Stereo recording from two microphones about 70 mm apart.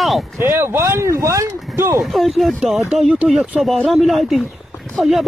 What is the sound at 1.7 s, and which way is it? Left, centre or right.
Speech, right.